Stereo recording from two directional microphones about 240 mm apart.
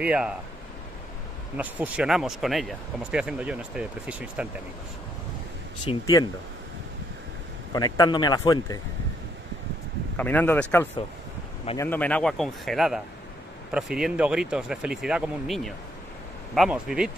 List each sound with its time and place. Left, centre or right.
0.0 s speech: centre
1.6 s speech: centre
5.9 s speech: centre
7.7 s speech: centre
10.1 s speech: centre